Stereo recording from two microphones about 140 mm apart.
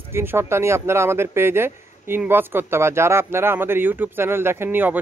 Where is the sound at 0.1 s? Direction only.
15° right (ahead or behind).